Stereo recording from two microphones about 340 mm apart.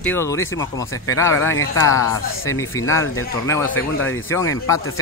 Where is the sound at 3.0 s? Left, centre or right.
Left.